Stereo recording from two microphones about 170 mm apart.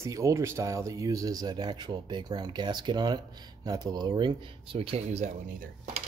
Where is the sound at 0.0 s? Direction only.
15° right (ahead or behind); by 5.3 s 40° right (ahead or behind).